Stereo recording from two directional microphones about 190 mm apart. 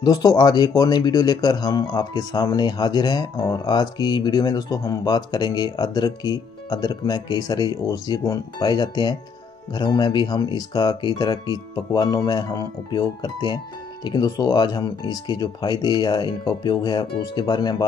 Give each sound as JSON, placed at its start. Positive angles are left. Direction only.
{"t": 0.0, "sound": "speech", "side_deg": 20}